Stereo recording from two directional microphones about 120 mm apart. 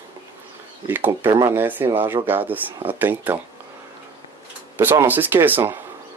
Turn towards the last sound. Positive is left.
turn(degrees=-15)  # may be behind; listen again after turning